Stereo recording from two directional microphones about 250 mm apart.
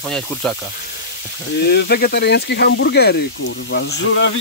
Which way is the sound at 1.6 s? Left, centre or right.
Left.